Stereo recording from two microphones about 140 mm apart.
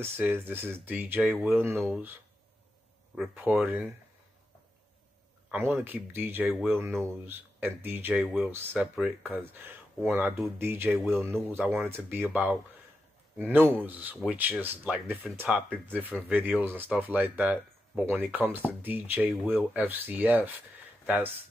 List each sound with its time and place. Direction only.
0.0 s speech: 15° right (ahead or behind)
3.3 s speech: 10° right (ahead or behind)
5.5 s speech: 15° right (ahead or behind)